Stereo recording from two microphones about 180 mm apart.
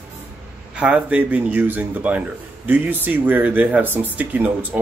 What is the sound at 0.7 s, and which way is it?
Speech, 5° right (ahead or behind).